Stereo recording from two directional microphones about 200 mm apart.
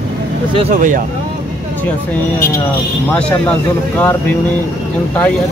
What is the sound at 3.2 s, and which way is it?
Speech, 5° left (ahead or behind).